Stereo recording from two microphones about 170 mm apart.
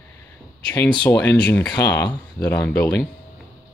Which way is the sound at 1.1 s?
10° left (ahead or behind).